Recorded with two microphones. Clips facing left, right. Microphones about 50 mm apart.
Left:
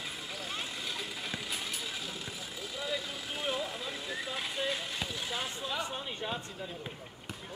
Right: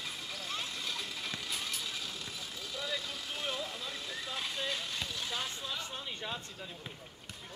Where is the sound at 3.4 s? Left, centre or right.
Centre.